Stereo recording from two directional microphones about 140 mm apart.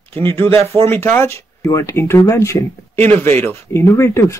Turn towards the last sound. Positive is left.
turn(degrees=20)  # may be behind; listen again after turning